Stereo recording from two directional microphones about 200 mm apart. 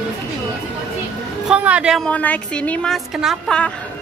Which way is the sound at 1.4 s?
5° right (ahead or behind).